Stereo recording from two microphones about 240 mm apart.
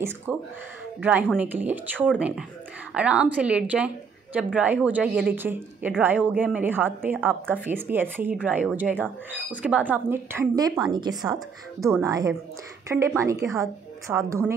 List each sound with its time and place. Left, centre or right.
0.3 s a woman's voice: centre